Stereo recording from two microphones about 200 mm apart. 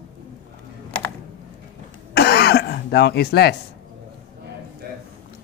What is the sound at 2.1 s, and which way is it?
Throat clearing, 55° left (ahead or behind).